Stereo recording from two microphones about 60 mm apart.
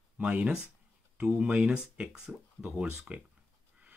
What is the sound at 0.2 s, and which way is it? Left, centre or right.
Speech, centre.